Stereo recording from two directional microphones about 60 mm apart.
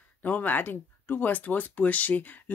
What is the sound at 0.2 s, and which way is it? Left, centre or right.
Speech, left.